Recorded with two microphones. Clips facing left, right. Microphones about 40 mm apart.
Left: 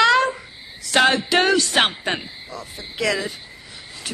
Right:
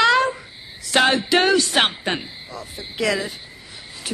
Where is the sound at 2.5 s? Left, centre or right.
Right.